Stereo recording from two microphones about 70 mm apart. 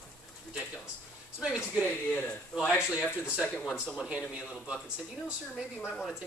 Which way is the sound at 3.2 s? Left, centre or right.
Centre.